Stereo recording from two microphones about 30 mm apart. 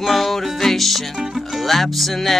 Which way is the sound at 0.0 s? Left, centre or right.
Centre.